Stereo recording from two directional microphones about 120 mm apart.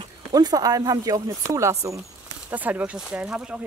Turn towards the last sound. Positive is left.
turn(degrees=-10)  # may be behind; listen again after turning